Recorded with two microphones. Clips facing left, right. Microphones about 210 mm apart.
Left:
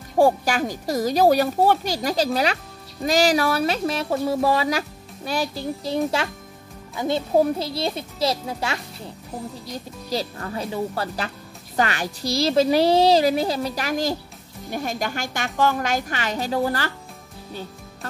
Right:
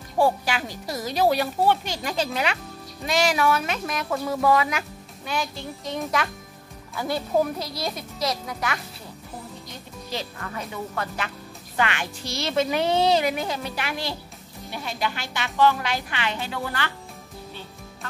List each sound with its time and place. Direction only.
0.2 s speech: 45° left (ahead or behind)
7.0 s a woman's voice: 25° left (ahead or behind); by 16.9 s 40° left (ahead or behind)